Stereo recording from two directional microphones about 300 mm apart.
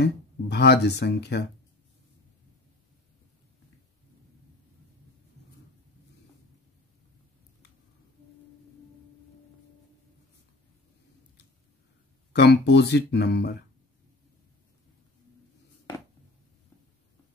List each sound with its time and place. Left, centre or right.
0.0 s speech: left
12.3 s speech: left